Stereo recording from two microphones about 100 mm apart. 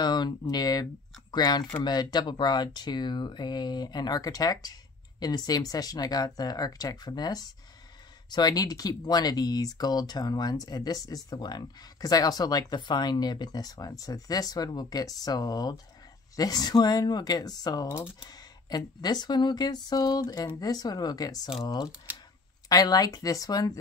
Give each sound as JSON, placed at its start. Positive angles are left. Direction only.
{"t": 0.0, "sound": "speech", "side_deg": 45}